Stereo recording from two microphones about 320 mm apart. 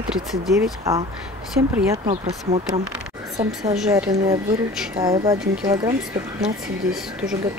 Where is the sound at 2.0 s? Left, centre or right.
Centre.